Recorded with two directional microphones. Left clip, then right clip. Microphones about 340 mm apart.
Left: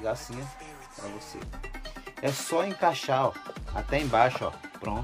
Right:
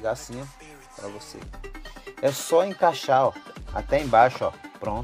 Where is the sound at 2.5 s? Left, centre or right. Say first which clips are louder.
Right 5 dB; right.